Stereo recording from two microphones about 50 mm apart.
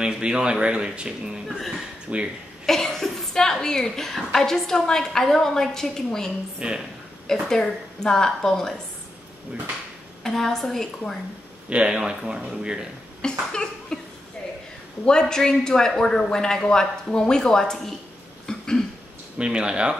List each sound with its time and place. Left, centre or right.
0.0 s speech: centre
2.1 s speech: right
2.6 s a woman's voice: centre
10.2 s a woman's voice: centre
11.7 s speech: centre
13.2 s a sound: centre
15.0 s a woman's voice: centre
18.5 s cough: centre
19.3 s speech: centre